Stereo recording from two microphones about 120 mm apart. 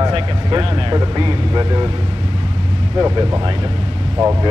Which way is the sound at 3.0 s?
30° right (ahead or behind).